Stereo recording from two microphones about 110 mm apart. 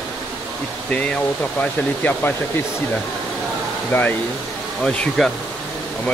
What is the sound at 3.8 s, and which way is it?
Speech, 15° left (ahead or behind).